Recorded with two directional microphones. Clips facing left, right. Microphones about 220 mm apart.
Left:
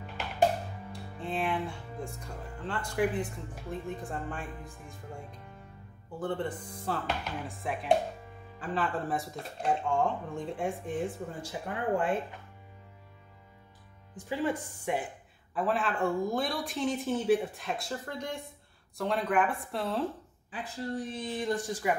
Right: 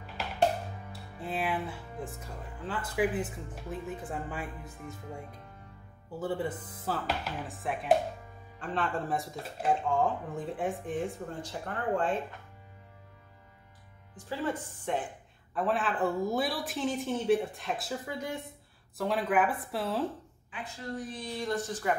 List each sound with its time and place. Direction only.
1.2 s speech: 5° right (ahead or behind)
6.1 s speech: 5° right (ahead or behind); by 12.2 s 10° left (ahead or behind)
14.1 s speech: 15° left (ahead or behind)
15.5 s speech: centre (ahead or behind)
20.5 s a woman's voice: 35° left (ahead or behind)
21.2 s speech: 20° left (ahead or behind)